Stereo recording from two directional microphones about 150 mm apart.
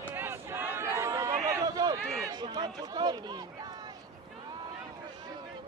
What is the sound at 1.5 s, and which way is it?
Run, 25° right (ahead or behind).